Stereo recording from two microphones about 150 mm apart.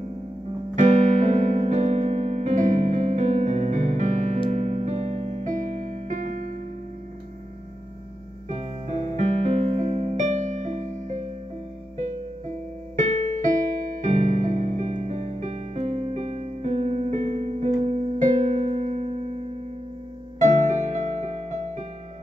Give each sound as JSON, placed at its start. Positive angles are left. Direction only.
{"t": 0.7, "sound": "music", "side_deg": -55}
{"t": 8.5, "sound": "music", "side_deg": -45}
{"t": 12.9, "sound": "music", "side_deg": -55}